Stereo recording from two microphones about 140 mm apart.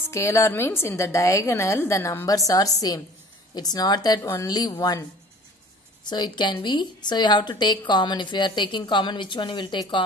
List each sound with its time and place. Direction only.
0.1 s a woman's voice: 20° left (ahead or behind)
6.0 s a woman's voice: 30° left (ahead or behind)